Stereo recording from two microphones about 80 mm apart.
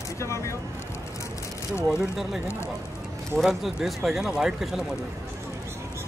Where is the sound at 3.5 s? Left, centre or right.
Centre.